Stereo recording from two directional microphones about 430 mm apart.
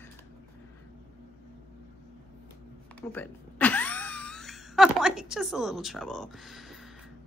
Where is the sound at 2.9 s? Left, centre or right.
Centre.